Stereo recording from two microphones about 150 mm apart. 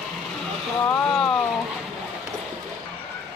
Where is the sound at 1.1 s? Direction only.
Centre (ahead or behind).